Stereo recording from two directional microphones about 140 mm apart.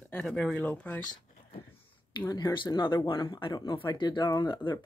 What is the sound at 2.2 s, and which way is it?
Speech, 30° left (ahead or behind).